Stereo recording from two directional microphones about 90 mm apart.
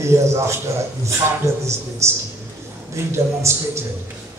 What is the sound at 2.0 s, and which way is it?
A man's voice, 30° right (ahead or behind).